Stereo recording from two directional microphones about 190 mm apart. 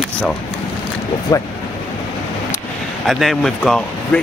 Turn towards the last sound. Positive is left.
turn(degrees=5)  # may be behind; listen again after turning